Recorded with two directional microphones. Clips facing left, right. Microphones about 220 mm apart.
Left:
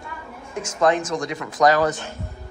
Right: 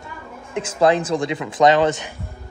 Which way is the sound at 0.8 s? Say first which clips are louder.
Right 3 dB; 30° right (ahead or behind).